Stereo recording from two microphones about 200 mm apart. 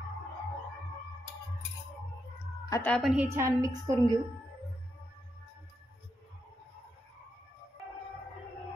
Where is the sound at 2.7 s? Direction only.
10° left (ahead or behind).